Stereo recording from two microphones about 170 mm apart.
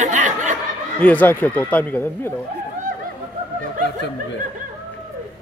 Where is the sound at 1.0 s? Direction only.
10° left (ahead or behind).